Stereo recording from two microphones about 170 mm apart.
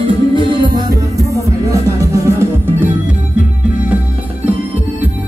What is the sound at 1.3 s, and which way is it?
Music, 20° right (ahead or behind).